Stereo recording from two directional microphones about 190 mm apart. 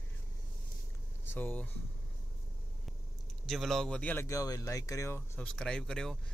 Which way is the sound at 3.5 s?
Centre (ahead or behind).